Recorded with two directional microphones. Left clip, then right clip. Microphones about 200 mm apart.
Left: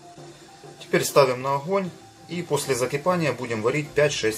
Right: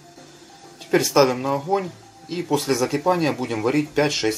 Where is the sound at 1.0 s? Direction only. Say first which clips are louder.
Right 1 dB; 20° right (ahead or behind).